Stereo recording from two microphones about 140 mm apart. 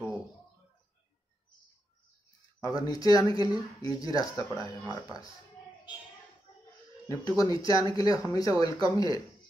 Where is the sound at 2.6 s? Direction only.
25° left (ahead or behind).